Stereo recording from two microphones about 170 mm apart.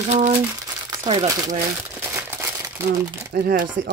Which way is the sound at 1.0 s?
25° right (ahead or behind).